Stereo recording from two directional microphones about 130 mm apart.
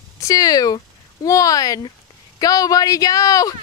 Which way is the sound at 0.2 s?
25° left (ahead or behind).